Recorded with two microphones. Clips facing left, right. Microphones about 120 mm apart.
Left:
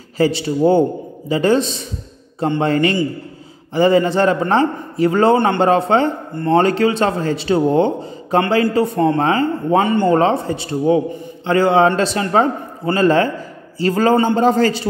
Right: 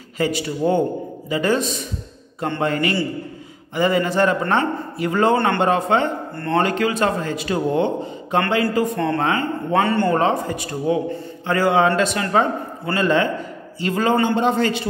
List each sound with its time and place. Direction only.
0.2 s a man's voice: 30° left (ahead or behind)
10.1 s a man's voice: 30° left (ahead or behind)